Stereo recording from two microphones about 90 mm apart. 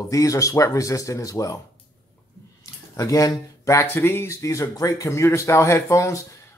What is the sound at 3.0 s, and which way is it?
Speech, 40° left (ahead or behind).